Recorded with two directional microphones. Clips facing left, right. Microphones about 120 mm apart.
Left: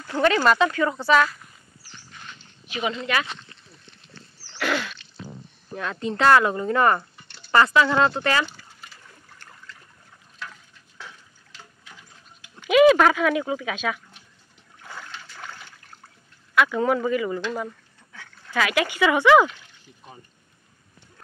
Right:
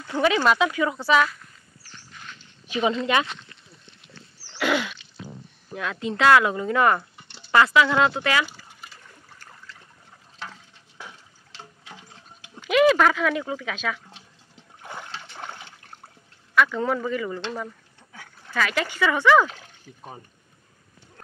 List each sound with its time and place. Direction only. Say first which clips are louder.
0.0 s speech: left 1 dB; centre (ahead or behind)
1.4 s a sound: left 1 dB; 5° left (ahead or behind)
2.7 s speech: right 4 dB; 30° right (ahead or behind)
4.5 s sneeze: right 2 dB; 15° right (ahead or behind)
5.7 s speech: left 1 dB; 5° right (ahead or behind)
10.4 s a sound: right 1 dB; 30° right (ahead or behind)
11.5 s water: right 4 dB; 25° right (ahead or behind)
12.5 s speech: left 3 dB; centre (ahead or behind)
14.8 s boat: right 2 dB; 20° right (ahead or behind)
16.5 s speech: left 1 dB; 10° left (ahead or behind)
18.5 s speech: left 2 dB; 5° left (ahead or behind)
19.5 s a sound: right 4 dB; 45° right (ahead or behind)